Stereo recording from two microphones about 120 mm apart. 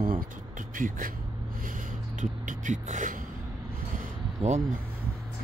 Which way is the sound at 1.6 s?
90° right.